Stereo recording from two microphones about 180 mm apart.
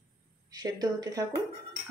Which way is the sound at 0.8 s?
20° right (ahead or behind).